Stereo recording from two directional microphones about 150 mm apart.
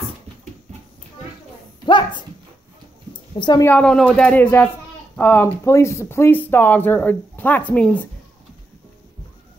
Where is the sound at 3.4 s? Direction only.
30° left (ahead or behind).